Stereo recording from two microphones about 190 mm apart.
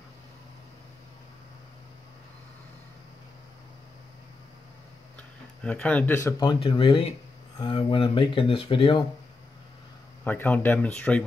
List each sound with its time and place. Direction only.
5.6 s speech: 5° left (ahead or behind); by 9.0 s 25° left (ahead or behind)
10.2 s speech: 10° left (ahead or behind)